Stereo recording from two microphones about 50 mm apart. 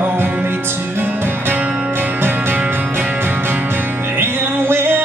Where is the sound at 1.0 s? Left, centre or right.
Right.